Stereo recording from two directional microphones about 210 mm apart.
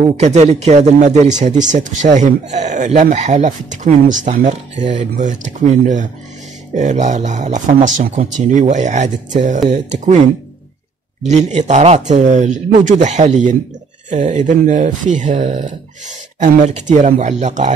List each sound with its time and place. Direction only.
0.0 s speech: 30° right (ahead or behind)